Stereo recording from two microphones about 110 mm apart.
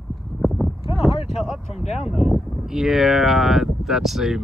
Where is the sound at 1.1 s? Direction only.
65° left (ahead or behind).